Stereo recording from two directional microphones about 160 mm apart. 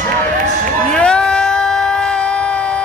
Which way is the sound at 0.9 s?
5° left (ahead or behind).